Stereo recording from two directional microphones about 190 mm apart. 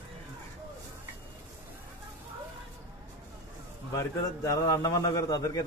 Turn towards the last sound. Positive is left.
turn(degrees=20)  # may be behind; listen again after turning